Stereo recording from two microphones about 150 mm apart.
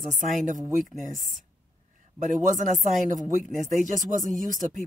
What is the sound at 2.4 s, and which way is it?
Speech, 55° right (ahead or behind).